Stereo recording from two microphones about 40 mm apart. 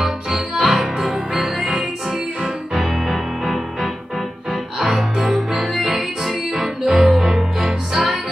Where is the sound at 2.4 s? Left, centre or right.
Centre.